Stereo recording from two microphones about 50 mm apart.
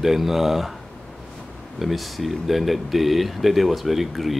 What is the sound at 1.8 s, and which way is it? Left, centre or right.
Speech, centre.